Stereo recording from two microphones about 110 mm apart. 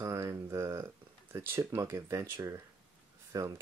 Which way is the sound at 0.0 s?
25° right (ahead or behind).